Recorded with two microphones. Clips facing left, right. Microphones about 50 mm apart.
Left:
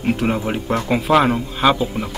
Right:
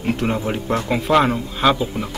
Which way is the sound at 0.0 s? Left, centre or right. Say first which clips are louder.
Left 2 dB; centre.